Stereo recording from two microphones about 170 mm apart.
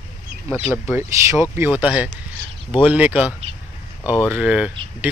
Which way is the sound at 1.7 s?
5° right (ahead or behind).